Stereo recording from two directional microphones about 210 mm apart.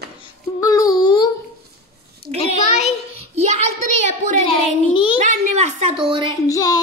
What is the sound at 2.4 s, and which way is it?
Speech, 30° left (ahead or behind).